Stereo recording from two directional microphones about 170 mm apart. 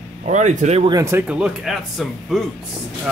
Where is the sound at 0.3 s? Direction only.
45° right (ahead or behind).